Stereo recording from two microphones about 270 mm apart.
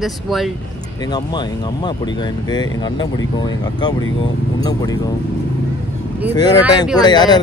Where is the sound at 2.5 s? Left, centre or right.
Centre.